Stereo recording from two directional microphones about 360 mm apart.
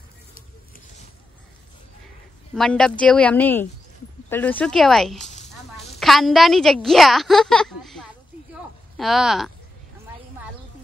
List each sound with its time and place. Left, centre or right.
2.5 s a woman's voice: centre
5.2 s a sound: centre
5.9 s a woman's voice: centre